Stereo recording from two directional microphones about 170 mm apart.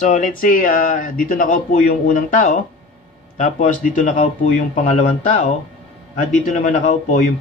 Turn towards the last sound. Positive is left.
turn(degrees=45)  # may be behind; listen again after turning